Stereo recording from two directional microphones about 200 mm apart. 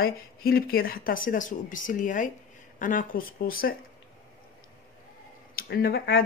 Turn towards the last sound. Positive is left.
turn(degrees=50)  # may be behind; listen again after turning